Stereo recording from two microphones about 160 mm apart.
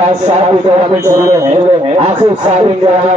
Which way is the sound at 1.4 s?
40° right (ahead or behind).